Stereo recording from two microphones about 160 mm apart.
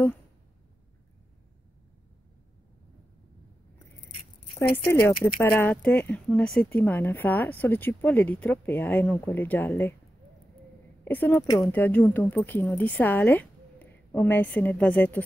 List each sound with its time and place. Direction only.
4.8 s speech: 15° left (ahead or behind)
11.1 s speech: 10° left (ahead or behind)